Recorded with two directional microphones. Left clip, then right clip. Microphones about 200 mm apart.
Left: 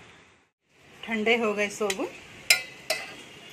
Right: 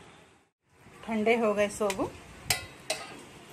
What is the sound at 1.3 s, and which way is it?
Speech, centre (ahead or behind).